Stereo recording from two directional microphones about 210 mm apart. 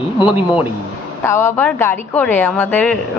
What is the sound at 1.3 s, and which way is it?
A woman's voice, 10° left (ahead or behind).